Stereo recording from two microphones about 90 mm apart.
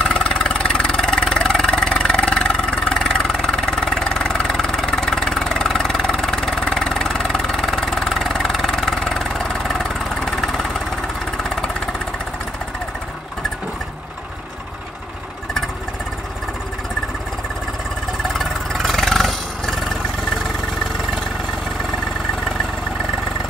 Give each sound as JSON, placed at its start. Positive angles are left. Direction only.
{"t": 0.0, "sound": "vehicle", "side_deg": 10}
{"t": 18.3, "sound": "vehicle", "side_deg": 5}